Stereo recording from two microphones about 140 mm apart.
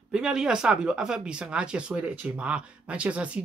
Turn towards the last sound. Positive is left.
turn(degrees=-10)  # may be behind; listen again after turning